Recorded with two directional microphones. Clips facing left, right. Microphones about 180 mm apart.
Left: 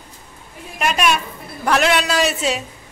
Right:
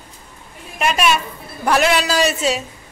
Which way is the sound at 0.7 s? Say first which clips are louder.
Right 1 dB; centre (ahead or behind).